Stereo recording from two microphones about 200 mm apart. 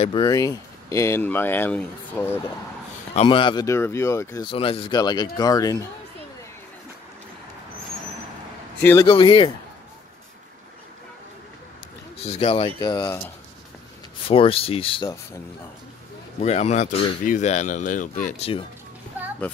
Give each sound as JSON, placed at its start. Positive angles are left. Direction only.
{"t": 0.0, "sound": "speech", "side_deg": 25}
{"t": 3.2, "sound": "speech", "side_deg": 25}
{"t": 4.5, "sound": "speech", "side_deg": 25}
{"t": 9.0, "sound": "speech", "side_deg": 25}
{"t": 12.2, "sound": "speech", "side_deg": 30}
{"t": 14.2, "sound": "speech", "side_deg": 30}
{"t": 16.3, "sound": "speech", "side_deg": 35}